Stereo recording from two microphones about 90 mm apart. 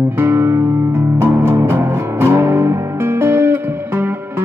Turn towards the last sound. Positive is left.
turn(degrees=-25)  # may be behind; listen again after turning